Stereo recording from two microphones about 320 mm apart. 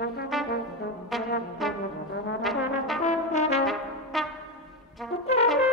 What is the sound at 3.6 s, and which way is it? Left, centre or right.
Brass instrument, centre.